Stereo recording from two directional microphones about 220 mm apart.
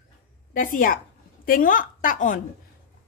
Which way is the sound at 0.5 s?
35° left (ahead or behind).